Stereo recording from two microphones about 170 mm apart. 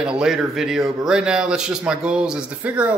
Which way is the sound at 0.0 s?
5° right (ahead or behind).